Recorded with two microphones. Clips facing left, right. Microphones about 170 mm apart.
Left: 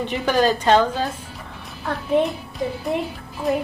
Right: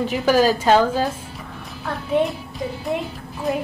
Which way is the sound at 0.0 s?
5° right (ahead or behind).